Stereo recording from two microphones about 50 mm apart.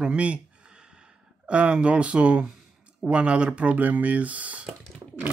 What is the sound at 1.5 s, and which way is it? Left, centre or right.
Speech, right.